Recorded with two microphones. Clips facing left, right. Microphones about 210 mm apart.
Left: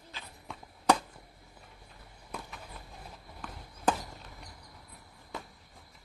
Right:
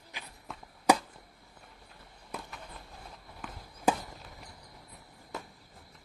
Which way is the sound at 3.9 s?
Centre (ahead or behind).